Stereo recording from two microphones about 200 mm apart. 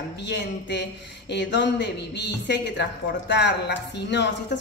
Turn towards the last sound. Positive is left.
turn(degrees=60)  # may be behind; listen again after turning